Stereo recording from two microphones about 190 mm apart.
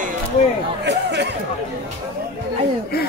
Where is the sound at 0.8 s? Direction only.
65° right (ahead or behind).